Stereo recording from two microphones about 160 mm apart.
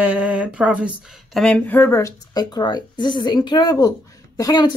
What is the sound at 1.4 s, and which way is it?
Speech, 10° left (ahead or behind).